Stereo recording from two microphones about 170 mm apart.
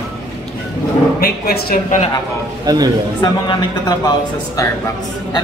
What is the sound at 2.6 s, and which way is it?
Speech, 20° right (ahead or behind).